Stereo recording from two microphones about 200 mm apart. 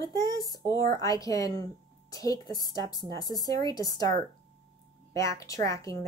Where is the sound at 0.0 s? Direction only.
15° left (ahead or behind).